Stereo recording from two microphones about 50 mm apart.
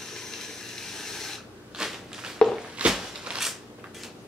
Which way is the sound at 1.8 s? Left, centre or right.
Centre.